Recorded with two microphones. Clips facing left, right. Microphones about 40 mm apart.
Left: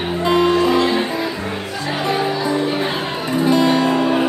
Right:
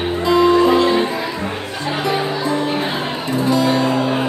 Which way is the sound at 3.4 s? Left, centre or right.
Left.